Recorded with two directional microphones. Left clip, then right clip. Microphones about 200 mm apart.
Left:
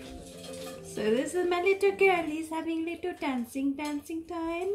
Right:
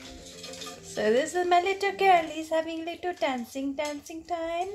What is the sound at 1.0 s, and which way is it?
A woman's voice, 35° right (ahead or behind).